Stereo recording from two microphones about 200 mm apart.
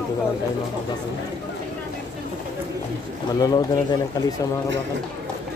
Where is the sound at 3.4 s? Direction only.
20° left (ahead or behind).